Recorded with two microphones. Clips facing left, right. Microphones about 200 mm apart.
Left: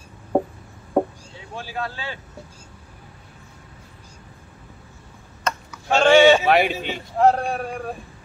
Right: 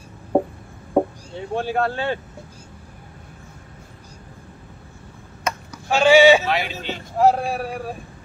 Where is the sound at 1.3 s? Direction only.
60° right (ahead or behind).